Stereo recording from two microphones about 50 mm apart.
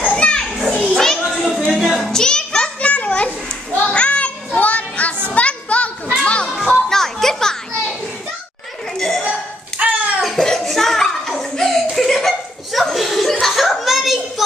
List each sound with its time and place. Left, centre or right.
0.1 s children playing: centre
0.5 s children playing: centre
0.8 s children playing: centre
1.7 s a sound: centre; by 3.3 s left
3.9 s children playing: left
4.6 s music: left
6.2 s children playing: left
6.7 s children playing: centre
8.9 s chuckle: centre
9.2 s a sound: right
10.2 s a sound: centre